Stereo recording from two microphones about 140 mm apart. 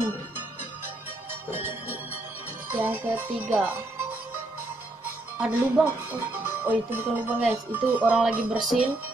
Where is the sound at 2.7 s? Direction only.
15° right (ahead or behind).